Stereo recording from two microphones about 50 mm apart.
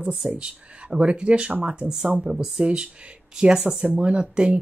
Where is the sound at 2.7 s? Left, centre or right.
Right.